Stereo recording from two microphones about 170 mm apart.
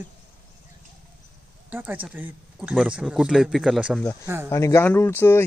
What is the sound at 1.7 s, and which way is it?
Speech, 10° right (ahead or behind).